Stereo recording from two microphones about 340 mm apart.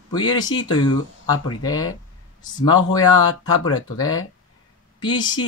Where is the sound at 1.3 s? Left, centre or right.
Left.